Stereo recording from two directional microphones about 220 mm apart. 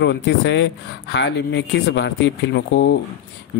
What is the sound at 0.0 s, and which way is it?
Speech, 55° left (ahead or behind).